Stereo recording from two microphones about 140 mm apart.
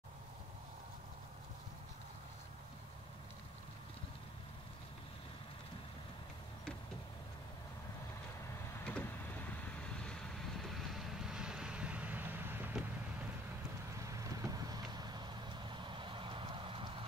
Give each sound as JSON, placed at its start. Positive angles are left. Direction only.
{"t": 8.7, "sound": "vehicle", "side_deg": 10}
{"t": 13.9, "sound": "vehicle", "side_deg": -25}